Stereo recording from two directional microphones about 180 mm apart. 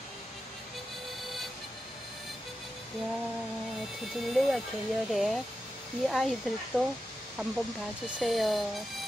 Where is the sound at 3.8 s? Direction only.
Centre (ahead or behind).